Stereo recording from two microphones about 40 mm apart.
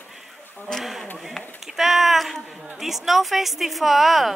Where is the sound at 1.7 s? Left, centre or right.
Centre.